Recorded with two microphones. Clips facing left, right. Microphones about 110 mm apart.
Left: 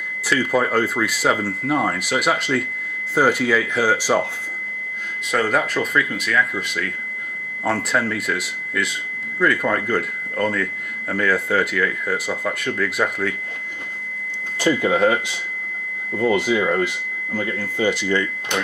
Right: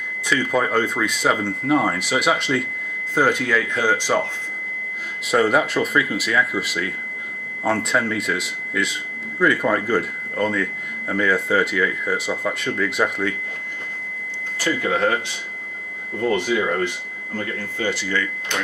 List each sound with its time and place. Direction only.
0.3 s speech: 5° left (ahead or behind)
5.3 s speech: 5° right (ahead or behind)
14.6 s speech: 20° left (ahead or behind)
16.2 s speech: 15° left (ahead or behind)